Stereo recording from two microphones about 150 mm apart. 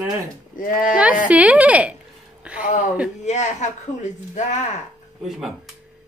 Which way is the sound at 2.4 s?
5° right (ahead or behind).